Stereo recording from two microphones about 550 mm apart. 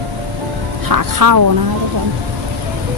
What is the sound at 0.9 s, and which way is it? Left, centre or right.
Speech, right.